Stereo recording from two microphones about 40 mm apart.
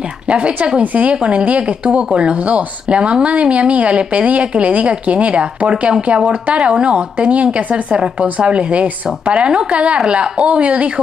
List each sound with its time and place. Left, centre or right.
0.3 s a woman's voice: right